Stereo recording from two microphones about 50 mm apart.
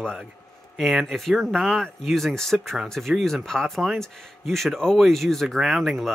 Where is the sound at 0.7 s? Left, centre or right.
Centre.